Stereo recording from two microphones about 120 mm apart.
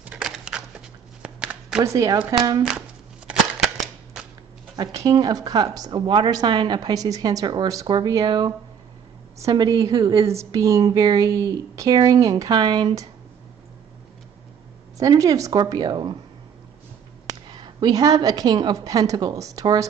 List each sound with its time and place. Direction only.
0.0 s a sound: 5° right (ahead or behind)
1.8 s a woman's voice: 30° right (ahead or behind)
3.3 s cap gun: 5° right (ahead or behind)
4.7 s a woman's voice: 35° right (ahead or behind)
10.2 s a woman's voice: 25° right (ahead or behind)
15.0 s a woman's voice: 30° right (ahead or behind)
17.6 s a woman's voice: 35° right (ahead or behind)